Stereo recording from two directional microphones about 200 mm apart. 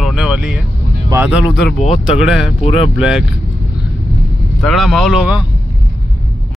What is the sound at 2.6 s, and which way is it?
Speech, 30° left (ahead or behind).